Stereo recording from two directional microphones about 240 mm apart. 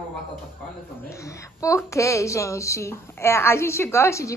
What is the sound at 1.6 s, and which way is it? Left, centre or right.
Speech, centre.